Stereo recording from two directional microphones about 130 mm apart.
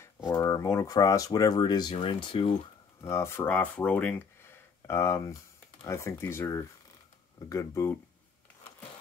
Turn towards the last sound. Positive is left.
turn(degrees=20)  # may be behind; listen again after turning